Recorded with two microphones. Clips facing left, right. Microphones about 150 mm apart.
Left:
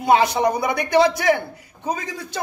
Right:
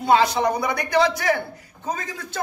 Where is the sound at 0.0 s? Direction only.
20° left (ahead or behind).